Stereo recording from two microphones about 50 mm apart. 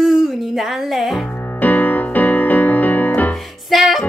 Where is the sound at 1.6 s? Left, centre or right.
Left.